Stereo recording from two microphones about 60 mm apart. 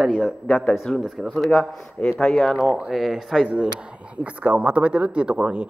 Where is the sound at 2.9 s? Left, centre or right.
Centre.